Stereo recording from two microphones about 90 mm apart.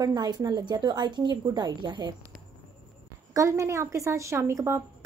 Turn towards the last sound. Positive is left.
turn(degrees=-30)  # may be behind; listen again after turning